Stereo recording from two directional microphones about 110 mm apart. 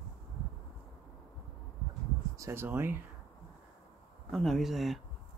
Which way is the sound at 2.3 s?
25° right (ahead or behind).